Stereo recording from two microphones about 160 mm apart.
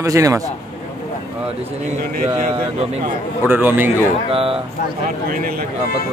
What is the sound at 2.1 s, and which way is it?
Speech, 50° right (ahead or behind).